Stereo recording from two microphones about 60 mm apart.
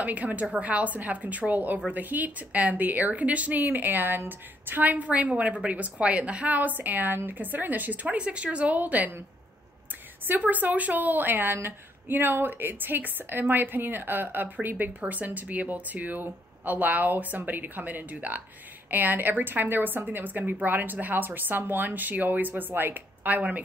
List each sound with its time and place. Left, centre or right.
0.0 s a woman's voice: right
10.2 s a woman's voice: right